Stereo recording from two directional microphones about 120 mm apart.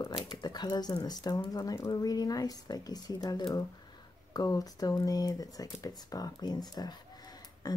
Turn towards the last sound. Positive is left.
turn(degrees=35)  # may be behind; listen again after turning